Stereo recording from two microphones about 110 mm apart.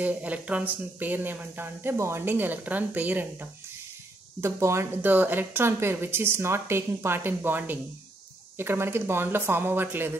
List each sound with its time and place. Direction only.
0.0 s speech: 15° right (ahead or behind)